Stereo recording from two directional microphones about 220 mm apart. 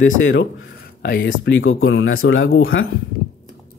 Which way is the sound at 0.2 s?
60° left (ahead or behind).